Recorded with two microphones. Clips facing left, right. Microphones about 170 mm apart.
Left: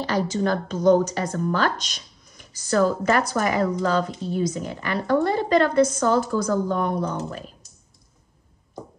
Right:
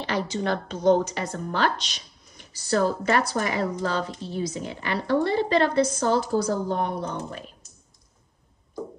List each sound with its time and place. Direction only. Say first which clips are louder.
0.0 s speech: left 4 dB; 40° left (ahead or behind)